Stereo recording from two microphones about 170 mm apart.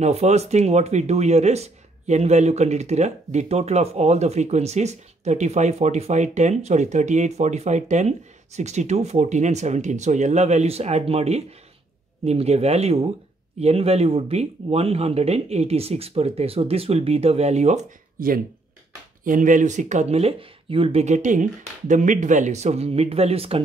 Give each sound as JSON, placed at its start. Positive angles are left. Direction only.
{"t": 0.0, "sound": "speech", "side_deg": -40}